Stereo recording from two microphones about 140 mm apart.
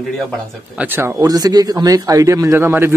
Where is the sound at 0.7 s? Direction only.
15° right (ahead or behind).